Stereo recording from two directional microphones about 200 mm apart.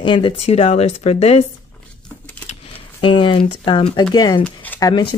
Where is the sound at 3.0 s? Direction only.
25° left (ahead or behind).